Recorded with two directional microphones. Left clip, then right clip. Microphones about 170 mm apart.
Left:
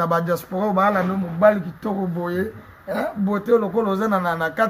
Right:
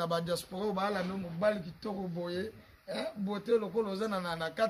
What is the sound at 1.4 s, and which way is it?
Speech, 15° right (ahead or behind).